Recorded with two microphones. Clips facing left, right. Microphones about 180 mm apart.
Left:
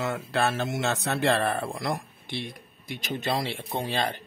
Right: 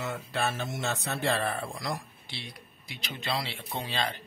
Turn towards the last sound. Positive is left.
turn(degrees=50)  # may be behind; listen again after turning